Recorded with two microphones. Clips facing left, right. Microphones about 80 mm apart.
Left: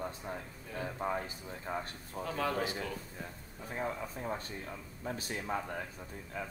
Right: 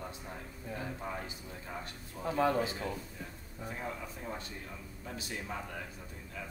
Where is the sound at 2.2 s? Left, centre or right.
Right.